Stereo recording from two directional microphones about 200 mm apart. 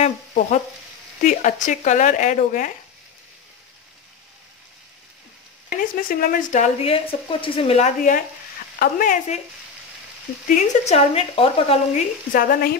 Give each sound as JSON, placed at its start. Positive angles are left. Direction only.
{"t": 0.0, "sound": "a woman's voice", "side_deg": 35}
{"t": 5.7, "sound": "a woman's voice", "side_deg": 45}
{"t": 10.5, "sound": "speech", "side_deg": 35}
{"t": 12.3, "sound": "a woman's voice", "side_deg": 45}